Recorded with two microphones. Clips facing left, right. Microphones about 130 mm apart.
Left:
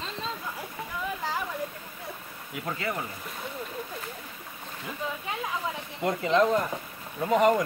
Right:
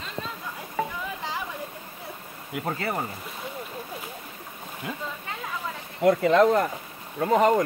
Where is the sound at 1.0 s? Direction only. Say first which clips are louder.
Left 1 dB; centre (ahead or behind).